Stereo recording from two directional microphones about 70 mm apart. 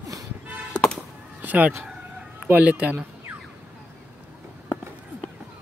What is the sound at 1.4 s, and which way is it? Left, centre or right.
Fowl, right.